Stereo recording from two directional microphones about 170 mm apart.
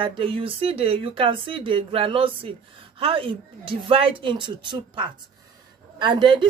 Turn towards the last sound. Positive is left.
turn(degrees=-25)  # may be behind; listen again after turning